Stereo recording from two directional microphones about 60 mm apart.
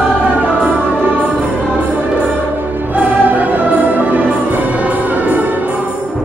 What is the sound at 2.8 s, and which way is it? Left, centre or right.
Music, right.